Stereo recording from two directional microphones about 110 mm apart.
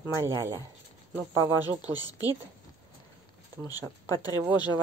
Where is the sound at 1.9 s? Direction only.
35° left (ahead or behind).